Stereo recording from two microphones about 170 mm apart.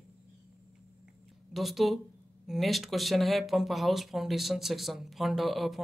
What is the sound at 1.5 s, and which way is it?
Speech, centre (ahead or behind).